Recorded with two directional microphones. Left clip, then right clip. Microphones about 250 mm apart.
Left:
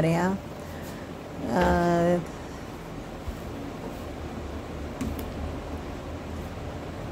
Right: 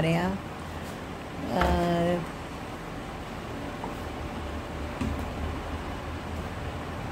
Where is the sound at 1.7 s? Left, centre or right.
Centre.